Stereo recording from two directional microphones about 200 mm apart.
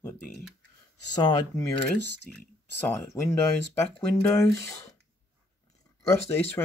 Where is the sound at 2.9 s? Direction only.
15° left (ahead or behind).